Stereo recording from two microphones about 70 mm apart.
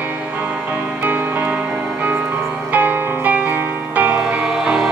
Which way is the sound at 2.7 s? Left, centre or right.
Right.